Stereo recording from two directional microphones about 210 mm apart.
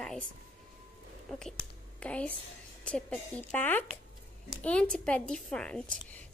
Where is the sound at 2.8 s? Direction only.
5° left (ahead or behind).